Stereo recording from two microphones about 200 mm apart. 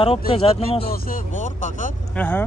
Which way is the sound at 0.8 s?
45° left (ahead or behind).